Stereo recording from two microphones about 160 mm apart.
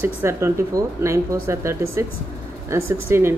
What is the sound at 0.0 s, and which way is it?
Speech, 15° right (ahead or behind).